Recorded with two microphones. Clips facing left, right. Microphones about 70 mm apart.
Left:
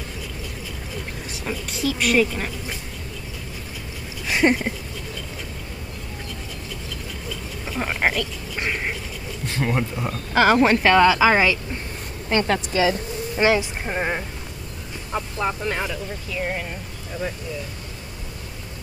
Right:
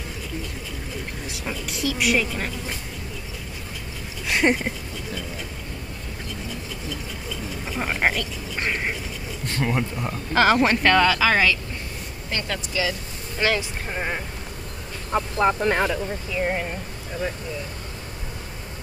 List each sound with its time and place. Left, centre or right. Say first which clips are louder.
1.3 s speech: left 3 dB; centre
4.3 s speech: left 2 dB; centre
7.6 s speech: left 1 dB; centre
12.3 s speech: left 8 dB; left
13.4 s speech: left 4 dB; centre
15.0 s speech: right 5 dB; centre
16.3 s speech: right 2 dB; centre